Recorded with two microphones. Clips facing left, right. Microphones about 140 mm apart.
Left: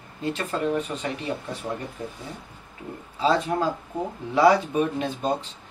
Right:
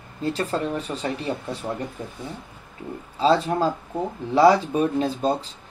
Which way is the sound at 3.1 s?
30° right (ahead or behind).